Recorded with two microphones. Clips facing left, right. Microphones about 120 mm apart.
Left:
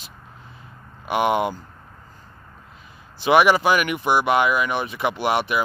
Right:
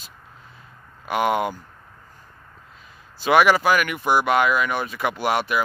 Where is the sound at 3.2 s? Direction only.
20° left (ahead or behind).